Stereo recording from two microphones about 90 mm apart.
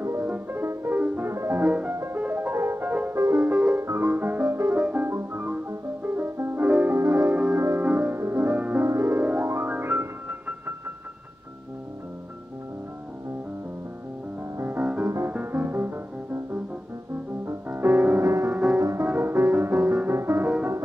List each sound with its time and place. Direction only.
0.0 s music: 30° right (ahead or behind)
1.3 s music: 30° right (ahead or behind)
1.6 s music: 20° right (ahead or behind)
3.2 s music: 30° right (ahead or behind)
4.7 s music: 15° right (ahead or behind)
8.5 s music: 15° right (ahead or behind)
8.8 s music: 30° right (ahead or behind)
14.6 s music: 20° right (ahead or behind)
15.0 s music: 30° right (ahead or behind)
18.2 s music: 35° right (ahead or behind)
19.0 s music: 25° right (ahead or behind)